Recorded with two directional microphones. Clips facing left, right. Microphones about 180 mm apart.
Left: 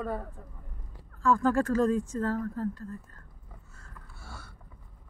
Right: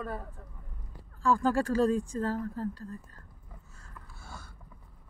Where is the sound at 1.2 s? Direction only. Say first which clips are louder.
Left 2 dB; 15° right (ahead or behind).